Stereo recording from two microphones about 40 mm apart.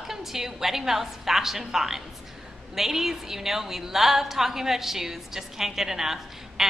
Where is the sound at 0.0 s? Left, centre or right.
Centre.